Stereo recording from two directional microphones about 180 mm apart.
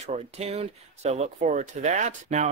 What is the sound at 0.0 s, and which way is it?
Speech, 35° right (ahead or behind).